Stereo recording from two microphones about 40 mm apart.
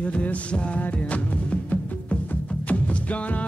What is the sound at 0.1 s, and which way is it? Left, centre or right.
Music, left.